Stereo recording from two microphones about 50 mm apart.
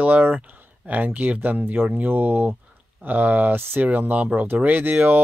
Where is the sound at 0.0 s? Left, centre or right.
Right.